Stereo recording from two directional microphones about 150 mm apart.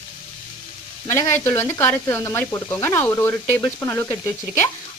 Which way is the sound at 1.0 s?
20° left (ahead or behind).